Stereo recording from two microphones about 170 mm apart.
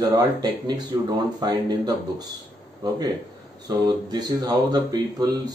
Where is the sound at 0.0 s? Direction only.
20° right (ahead or behind).